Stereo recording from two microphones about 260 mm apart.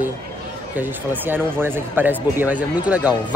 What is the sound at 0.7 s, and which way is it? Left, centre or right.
A man's voice, centre.